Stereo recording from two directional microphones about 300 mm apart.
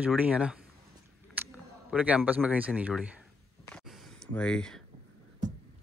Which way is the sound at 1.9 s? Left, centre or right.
Centre.